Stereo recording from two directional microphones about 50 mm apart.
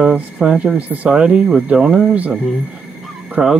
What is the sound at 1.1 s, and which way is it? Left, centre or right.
Speech, centre.